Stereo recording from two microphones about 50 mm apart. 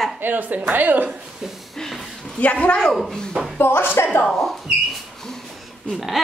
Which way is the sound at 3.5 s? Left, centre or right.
Left.